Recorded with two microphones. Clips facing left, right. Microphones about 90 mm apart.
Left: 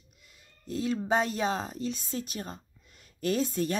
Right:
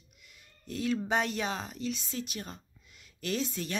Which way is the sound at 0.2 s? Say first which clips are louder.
Left 2 dB; 30° left (ahead or behind).